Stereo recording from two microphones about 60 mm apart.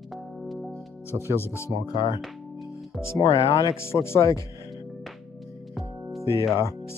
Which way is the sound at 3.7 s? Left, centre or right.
Left.